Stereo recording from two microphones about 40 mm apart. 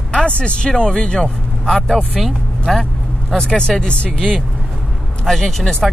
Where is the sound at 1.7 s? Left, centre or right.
Centre.